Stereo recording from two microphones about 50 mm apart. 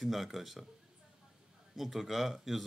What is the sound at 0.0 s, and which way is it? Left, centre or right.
Speech, centre.